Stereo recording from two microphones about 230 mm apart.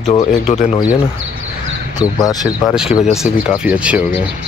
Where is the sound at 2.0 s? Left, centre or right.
Centre.